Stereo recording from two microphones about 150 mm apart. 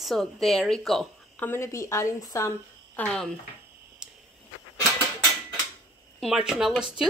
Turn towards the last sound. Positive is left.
turn(degrees=-5)  # may be behind; listen again after turning